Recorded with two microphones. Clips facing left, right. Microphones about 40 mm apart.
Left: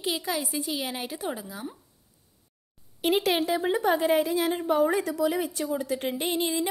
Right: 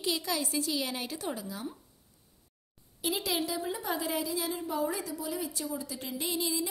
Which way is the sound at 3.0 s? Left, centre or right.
Left.